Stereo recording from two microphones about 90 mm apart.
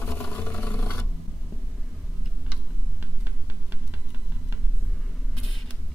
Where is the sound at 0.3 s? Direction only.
20° left (ahead or behind).